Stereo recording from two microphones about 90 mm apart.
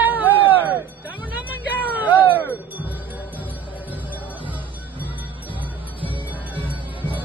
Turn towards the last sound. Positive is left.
turn(degrees=-20)  # may be behind; listen again after turning